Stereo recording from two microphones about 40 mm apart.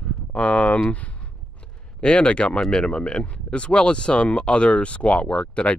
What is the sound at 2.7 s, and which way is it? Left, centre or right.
Speech, left.